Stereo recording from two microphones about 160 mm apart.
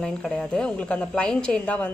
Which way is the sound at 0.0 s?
5° left (ahead or behind).